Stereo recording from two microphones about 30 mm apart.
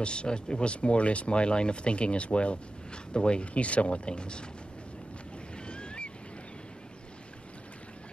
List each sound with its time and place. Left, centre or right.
0.0 s speech: left
0.7 s speech: left
5.7 s ocean: left